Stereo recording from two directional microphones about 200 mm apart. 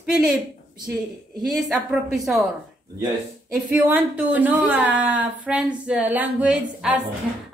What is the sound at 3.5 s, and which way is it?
A woman's voice, 5° right (ahead or behind).